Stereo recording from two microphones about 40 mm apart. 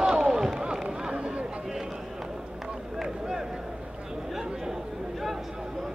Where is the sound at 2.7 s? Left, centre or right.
Centre.